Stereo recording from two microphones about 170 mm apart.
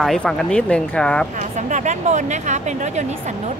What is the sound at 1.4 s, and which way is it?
Speech, 45° right (ahead or behind).